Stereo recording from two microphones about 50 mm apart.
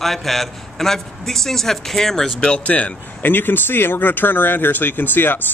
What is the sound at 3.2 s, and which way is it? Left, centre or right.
A man's voice, left.